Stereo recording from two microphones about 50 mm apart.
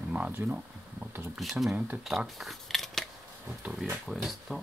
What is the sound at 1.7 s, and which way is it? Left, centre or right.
Speech, right.